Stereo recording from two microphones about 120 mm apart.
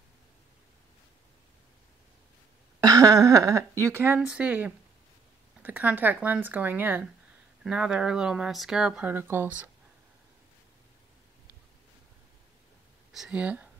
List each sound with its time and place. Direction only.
2.8 s speech: 30° right (ahead or behind)
13.1 s speech: 5° right (ahead or behind)